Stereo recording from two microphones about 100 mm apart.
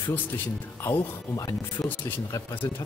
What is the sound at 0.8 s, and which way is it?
Speech, 30° left (ahead or behind).